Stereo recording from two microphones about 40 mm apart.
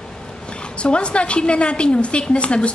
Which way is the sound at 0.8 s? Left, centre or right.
Left.